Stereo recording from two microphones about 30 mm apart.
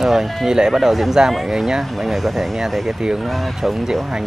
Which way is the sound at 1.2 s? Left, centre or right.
Right.